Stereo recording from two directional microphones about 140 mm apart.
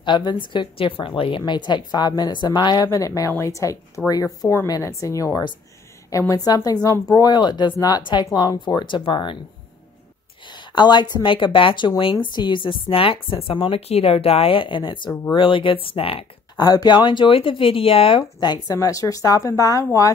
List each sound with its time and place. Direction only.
0.0 s a woman's voice: 30° left (ahead or behind)
10.7 s a woman's voice: 30° left (ahead or behind)
16.6 s a woman's voice: 30° left (ahead or behind)
18.2 s speech: 30° left (ahead or behind)